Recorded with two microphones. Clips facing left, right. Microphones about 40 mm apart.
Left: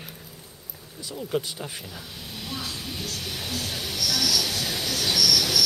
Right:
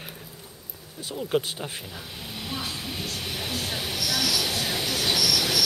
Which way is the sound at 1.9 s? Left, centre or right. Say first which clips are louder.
Right 1 dB; centre.